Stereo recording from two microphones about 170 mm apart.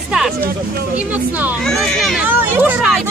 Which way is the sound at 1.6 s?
5° left (ahead or behind).